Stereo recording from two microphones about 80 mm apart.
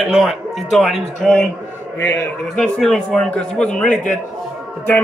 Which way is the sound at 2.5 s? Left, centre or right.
Centre.